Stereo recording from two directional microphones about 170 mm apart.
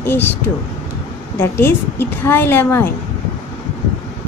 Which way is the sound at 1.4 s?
15° left (ahead or behind).